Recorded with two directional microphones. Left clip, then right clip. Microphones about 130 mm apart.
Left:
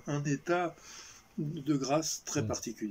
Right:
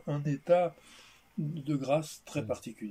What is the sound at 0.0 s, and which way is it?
Speech, 35° right (ahead or behind).